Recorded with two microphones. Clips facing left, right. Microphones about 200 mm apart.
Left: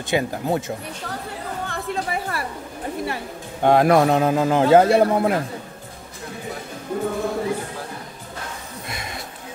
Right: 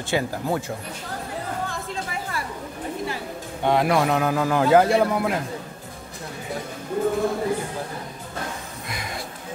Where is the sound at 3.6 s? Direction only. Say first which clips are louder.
Left 5 dB; 45° left (ahead or behind).